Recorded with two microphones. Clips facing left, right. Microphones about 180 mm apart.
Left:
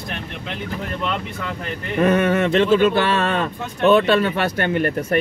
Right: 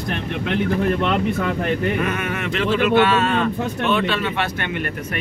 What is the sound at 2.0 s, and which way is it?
Speech, 35° left (ahead or behind).